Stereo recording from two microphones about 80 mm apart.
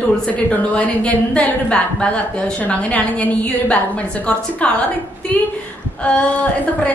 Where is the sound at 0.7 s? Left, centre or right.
Centre.